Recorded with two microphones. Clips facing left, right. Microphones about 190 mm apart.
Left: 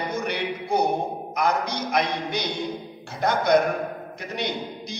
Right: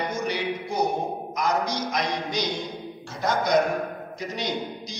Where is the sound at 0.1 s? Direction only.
60° left (ahead or behind).